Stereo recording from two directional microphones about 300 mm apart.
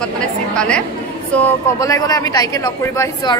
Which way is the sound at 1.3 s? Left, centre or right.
Centre.